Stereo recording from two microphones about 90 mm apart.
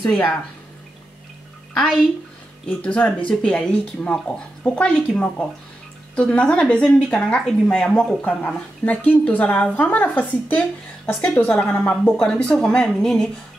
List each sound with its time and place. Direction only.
0.0 s a woman's voice: 10° left (ahead or behind)
2.8 s a woman's voice: 15° left (ahead or behind)
8.2 s a woman's voice: 15° left (ahead or behind)